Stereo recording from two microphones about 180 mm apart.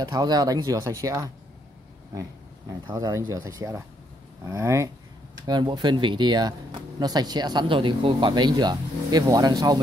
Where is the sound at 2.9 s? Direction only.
20° right (ahead or behind).